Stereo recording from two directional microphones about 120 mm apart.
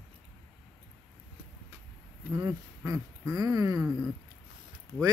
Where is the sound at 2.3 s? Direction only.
25° right (ahead or behind).